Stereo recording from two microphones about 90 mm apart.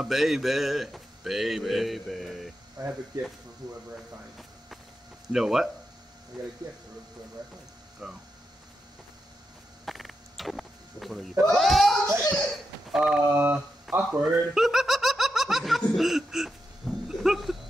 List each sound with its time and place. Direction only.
0.0 s speech: 5° right (ahead or behind)
3.6 s speech: 45° right (ahead or behind)
5.3 s speech: 5° right (ahead or behind)
8.0 s speech: 5° right (ahead or behind)
9.8 s a sound: centre (ahead or behind)
11.4 s speech: centre (ahead or behind)
12.4 s a sound: centre (ahead or behind)
13.3 s mantra: 20° right (ahead or behind)
13.9 s speech: centre (ahead or behind)
15.8 s a sound: centre (ahead or behind)